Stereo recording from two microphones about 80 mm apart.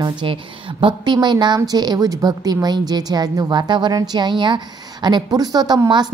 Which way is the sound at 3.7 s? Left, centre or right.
Right.